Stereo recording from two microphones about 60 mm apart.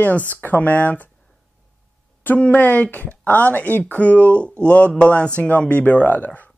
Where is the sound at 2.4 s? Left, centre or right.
Left.